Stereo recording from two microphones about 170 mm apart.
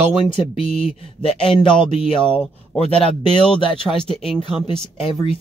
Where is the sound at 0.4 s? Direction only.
30° left (ahead or behind).